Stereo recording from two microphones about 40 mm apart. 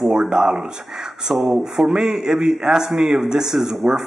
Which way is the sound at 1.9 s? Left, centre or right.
Centre.